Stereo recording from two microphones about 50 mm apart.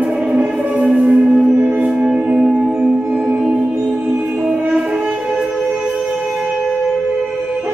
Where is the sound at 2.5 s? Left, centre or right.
Centre.